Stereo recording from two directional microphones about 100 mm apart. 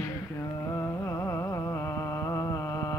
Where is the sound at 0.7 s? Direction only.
30° left (ahead or behind).